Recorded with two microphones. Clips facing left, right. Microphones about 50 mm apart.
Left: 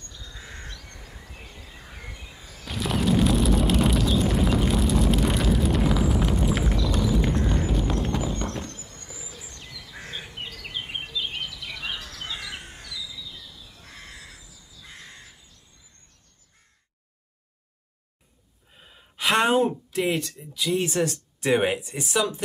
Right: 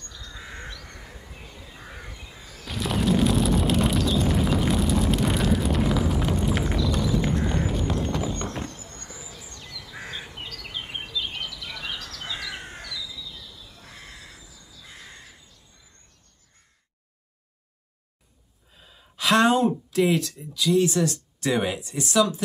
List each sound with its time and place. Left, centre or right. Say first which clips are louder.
0.1 s crow: right 2 dB; centre
0.4 s crow: right 3 dB; centre
1.8 s squawk: right 5 dB; centre
2.3 s a sound: even; centre
9.8 s bird: right 3 dB; centre
10.1 s bird: even; centre
13.7 s crow: left 1 dB; centre
18.8 s gasp: left 1 dB; left
19.1 s a sound: right 1 dB; centre
20.7 s speech: right 3 dB; left